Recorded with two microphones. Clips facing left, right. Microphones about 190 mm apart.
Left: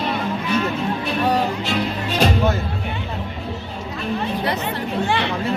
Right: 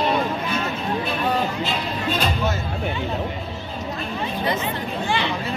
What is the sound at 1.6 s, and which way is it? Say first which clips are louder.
Music: left 2 dB; 80° left.